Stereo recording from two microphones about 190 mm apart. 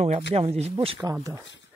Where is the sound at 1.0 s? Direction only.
20° right (ahead or behind).